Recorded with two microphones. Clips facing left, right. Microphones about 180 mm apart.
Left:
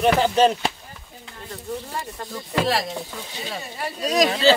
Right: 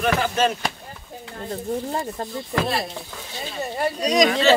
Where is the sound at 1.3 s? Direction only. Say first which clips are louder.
Right 5 dB; 40° right (ahead or behind).